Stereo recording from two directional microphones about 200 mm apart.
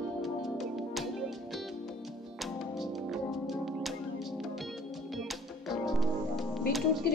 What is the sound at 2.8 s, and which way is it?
Music, centre (ahead or behind).